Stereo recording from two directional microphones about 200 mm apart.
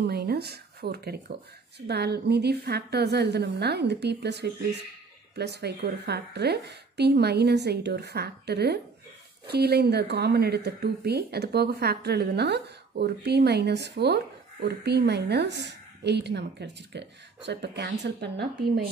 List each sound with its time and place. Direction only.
0.0 s speech: 55° right (ahead or behind)